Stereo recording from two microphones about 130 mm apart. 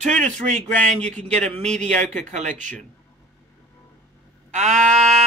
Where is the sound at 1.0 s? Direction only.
10° left (ahead or behind).